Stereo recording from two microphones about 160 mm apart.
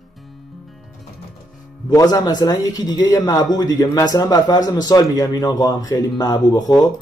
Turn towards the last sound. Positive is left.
turn(degrees=25)  # may be behind; listen again after turning